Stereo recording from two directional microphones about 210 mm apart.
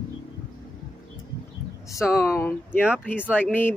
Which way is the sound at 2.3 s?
10° left (ahead or behind).